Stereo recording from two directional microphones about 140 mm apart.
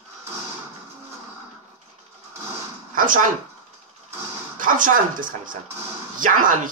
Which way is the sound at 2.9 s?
75° right (ahead or behind).